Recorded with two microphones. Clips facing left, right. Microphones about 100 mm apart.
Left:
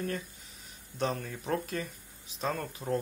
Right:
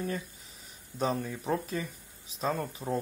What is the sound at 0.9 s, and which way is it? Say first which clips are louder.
Speech: right 2 dB; 5° right (ahead or behind).